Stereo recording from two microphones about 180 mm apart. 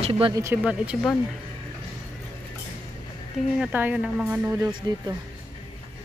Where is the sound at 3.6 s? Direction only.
10° right (ahead or behind).